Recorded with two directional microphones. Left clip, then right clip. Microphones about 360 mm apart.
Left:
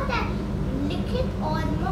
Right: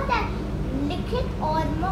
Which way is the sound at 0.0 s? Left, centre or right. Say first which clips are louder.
Right 2 dB; centre.